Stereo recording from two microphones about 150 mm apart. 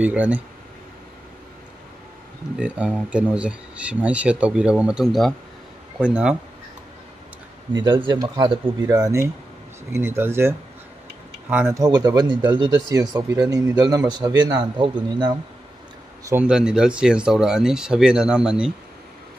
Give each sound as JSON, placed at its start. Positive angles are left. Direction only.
{"t": 0.0, "sound": "speech", "side_deg": -10}
{"t": 2.5, "sound": "speech", "side_deg": -5}
{"t": 7.7, "sound": "a man's voice", "side_deg": -25}
{"t": 11.5, "sound": "speech", "side_deg": -10}
{"t": 11.8, "sound": "a man's voice", "side_deg": -25}
{"t": 16.4, "sound": "speech", "side_deg": -5}